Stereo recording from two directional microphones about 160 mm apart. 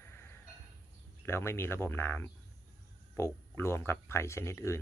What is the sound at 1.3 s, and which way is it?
Speech, 15° left (ahead or behind).